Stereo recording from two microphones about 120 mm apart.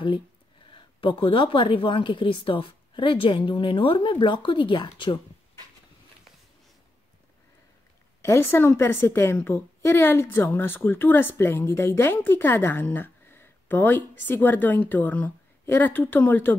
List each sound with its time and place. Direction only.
1.0 s speech: 45° left (ahead or behind)
8.2 s a woman's voice: 20° left (ahead or behind)